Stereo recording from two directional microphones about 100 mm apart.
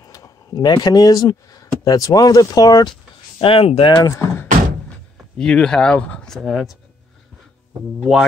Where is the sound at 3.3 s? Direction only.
65° left (ahead or behind).